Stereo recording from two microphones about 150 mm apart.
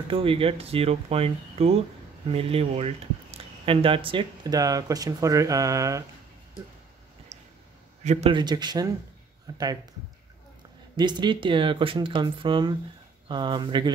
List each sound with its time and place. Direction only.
0.1 s speech: 35° right (ahead or behind); by 6.0 s 20° right (ahead or behind)
7.3 s a sound: 45° right (ahead or behind)
8.0 s a man's voice: 50° right (ahead or behind)
8.3 s speech: 30° right (ahead or behind)
9.5 s a sound: 25° right (ahead or behind)
11.0 s speech: 30° right (ahead or behind)